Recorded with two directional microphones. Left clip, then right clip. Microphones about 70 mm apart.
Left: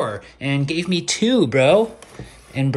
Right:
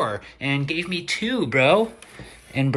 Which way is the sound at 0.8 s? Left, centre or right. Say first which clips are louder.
Left 5 dB; left.